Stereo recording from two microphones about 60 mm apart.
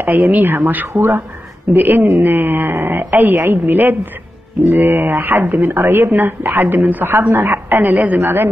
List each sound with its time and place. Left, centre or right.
0.0 s a woman's voice: right